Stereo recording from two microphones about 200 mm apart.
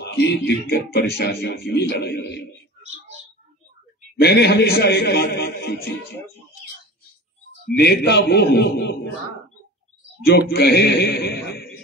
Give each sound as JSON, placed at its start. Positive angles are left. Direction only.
{"t": 0.0, "sound": "speech", "side_deg": 55}
{"t": 4.2, "sound": "speech", "side_deg": 55}
{"t": 7.7, "sound": "speech", "side_deg": 55}
{"t": 10.2, "sound": "speech", "side_deg": 55}